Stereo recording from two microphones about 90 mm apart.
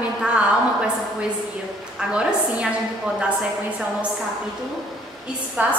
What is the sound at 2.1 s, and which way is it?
Speech, 10° right (ahead or behind).